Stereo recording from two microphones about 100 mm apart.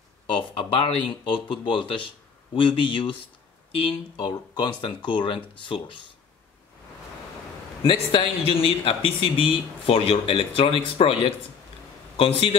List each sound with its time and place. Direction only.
0.4 s speech: 55° left (ahead or behind)
4.3 s speech: 50° left (ahead or behind)
7.8 s speech: 65° left (ahead or behind)